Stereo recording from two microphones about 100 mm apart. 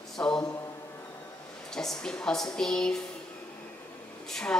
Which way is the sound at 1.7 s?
5° left (ahead or behind).